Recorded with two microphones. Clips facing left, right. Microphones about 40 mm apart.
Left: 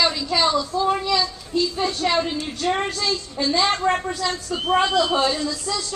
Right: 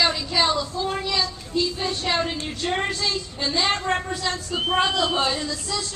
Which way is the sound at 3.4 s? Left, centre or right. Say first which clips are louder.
Left 4 dB; centre.